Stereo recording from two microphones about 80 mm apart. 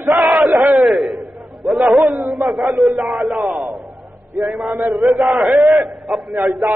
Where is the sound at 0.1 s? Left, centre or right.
Centre.